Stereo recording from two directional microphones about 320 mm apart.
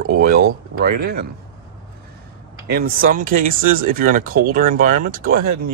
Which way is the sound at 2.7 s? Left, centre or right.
Right.